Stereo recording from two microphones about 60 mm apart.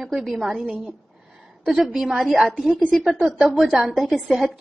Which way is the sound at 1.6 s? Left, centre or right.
Centre.